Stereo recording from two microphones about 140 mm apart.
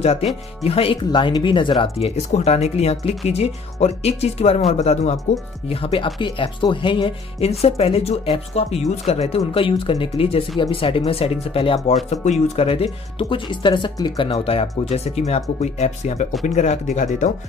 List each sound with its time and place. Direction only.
0.0 s speech: 50° left (ahead or behind)